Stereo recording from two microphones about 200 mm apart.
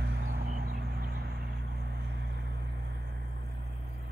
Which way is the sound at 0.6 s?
50° right (ahead or behind).